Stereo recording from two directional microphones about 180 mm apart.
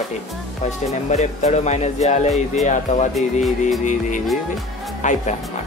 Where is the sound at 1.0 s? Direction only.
40° left (ahead or behind).